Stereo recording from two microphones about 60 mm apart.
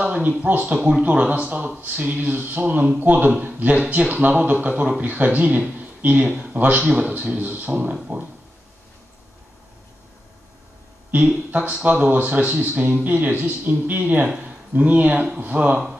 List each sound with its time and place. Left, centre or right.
0.0 s speech: right
11.5 s speech: right